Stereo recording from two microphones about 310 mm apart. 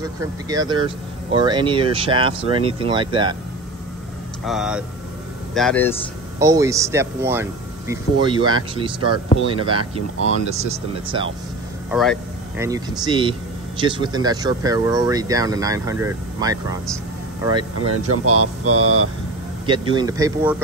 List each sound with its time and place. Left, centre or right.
0.0 s speech: centre
4.5 s speech: centre
6.4 s speech: centre
9.5 s speech: centre
11.9 s speech: centre
12.6 s speech: centre
17.7 s speech: right
19.6 s speech: centre